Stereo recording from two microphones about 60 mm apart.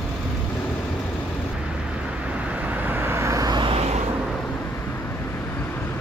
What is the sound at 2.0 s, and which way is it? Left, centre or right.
Vehicle, centre.